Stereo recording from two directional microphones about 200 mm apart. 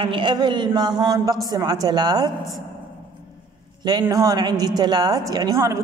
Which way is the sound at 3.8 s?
20° right (ahead or behind).